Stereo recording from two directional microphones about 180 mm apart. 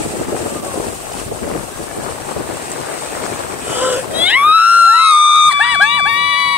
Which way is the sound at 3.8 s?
10° right (ahead or behind).